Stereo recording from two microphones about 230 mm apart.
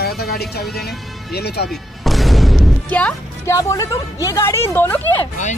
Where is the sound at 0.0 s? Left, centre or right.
Left.